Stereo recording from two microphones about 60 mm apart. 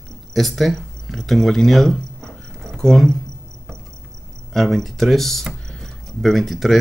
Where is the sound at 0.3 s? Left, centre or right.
Centre.